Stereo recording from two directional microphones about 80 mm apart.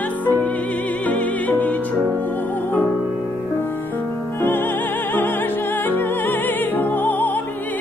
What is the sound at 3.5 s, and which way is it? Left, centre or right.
Music, left.